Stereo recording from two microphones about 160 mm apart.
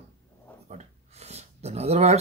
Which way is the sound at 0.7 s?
45° right (ahead or behind).